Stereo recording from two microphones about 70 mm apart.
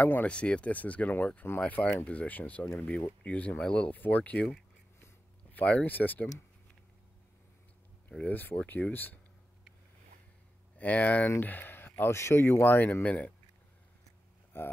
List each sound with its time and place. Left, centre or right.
0.0 s speech: left
8.1 s speech: centre
8.4 s speech: left
10.8 s speech: left
13.0 s speech: centre
14.5 s speech: left